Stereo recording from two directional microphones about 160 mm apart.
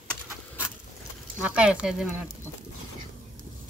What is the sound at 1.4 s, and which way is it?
Speech, 5° right (ahead or behind).